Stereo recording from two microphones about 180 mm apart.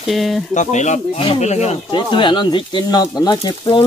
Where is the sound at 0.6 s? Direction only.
40° left (ahead or behind).